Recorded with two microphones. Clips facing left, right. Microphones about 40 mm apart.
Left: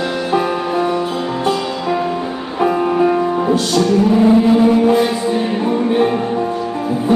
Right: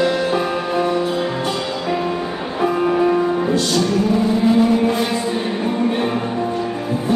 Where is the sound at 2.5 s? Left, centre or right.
Centre.